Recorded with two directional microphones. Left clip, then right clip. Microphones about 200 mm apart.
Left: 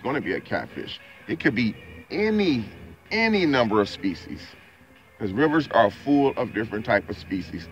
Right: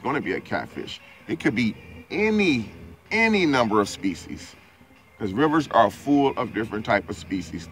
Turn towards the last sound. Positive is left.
turn(degrees=15)  # may be behind; listen again after turning